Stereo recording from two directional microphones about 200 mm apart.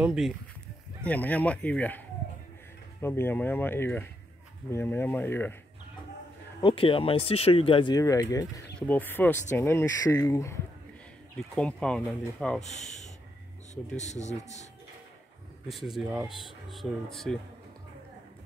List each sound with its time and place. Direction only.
0.0 s speech: 5° right (ahead or behind)
1.0 s speech: 10° left (ahead or behind)
6.6 s speech: 25° left (ahead or behind); by 12.6 s centre (ahead or behind)
13.9 s speech: 35° left (ahead or behind)
15.7 s speech: centre (ahead or behind)